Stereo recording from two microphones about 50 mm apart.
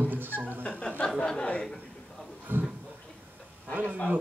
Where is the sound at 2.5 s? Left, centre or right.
Right.